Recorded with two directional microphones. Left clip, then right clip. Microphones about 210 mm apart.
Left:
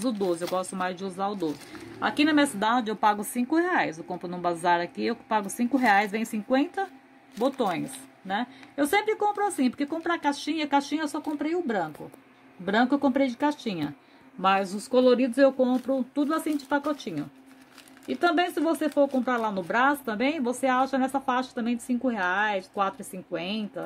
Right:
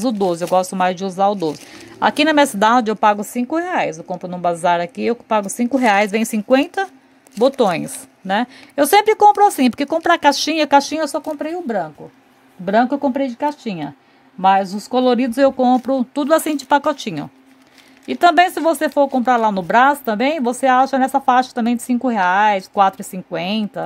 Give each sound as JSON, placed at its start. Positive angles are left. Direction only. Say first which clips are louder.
{"t": 0.0, "sound": "speech", "louder": "right 9 dB", "side_deg": -40}